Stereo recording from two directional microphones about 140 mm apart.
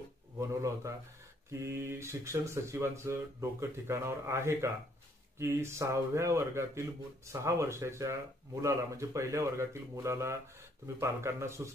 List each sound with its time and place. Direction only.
0.4 s speech: 20° right (ahead or behind)